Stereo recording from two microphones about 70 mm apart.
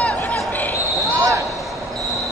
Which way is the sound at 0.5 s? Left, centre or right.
Left.